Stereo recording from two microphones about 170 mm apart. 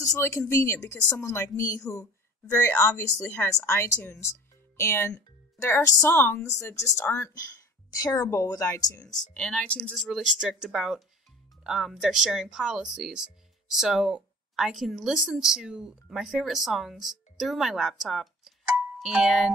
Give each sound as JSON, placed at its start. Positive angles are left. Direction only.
{"t": 0.0, "sound": "a woman's voice", "side_deg": 15}
{"t": 9.3, "sound": "speech", "side_deg": 5}